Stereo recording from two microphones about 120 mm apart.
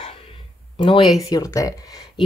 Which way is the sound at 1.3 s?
30° left (ahead or behind).